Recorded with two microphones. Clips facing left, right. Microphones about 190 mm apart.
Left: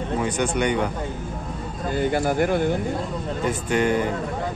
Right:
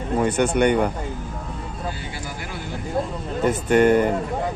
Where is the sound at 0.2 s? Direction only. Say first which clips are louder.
Right 6 dB; 55° right (ahead or behind).